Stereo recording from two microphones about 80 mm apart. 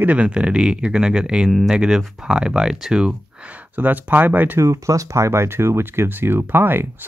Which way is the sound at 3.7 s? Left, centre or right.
Right.